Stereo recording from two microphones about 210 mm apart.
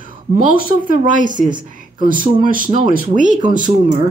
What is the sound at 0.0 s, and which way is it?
A woman's voice, 40° right (ahead or behind).